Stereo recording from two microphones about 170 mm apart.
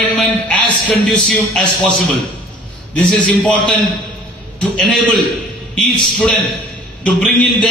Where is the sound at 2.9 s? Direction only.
5° left (ahead or behind).